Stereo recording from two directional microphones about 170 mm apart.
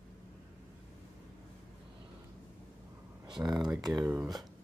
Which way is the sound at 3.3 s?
25° right (ahead or behind).